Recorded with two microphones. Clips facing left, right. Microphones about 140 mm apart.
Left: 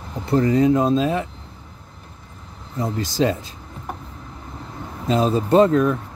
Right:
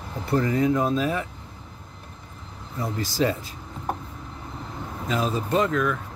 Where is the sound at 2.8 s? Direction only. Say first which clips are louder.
Left 4 dB; 20° left (ahead or behind).